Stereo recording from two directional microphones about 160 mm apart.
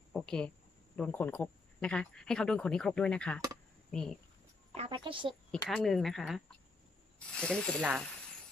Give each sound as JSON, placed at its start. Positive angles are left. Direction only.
{"t": 0.1, "sound": "a sound", "side_deg": 5}
{"t": 0.9, "sound": "speech", "side_deg": 5}
{"t": 4.7, "sound": "a woman's voice", "side_deg": -35}
{"t": 5.7, "sound": "speech", "side_deg": 0}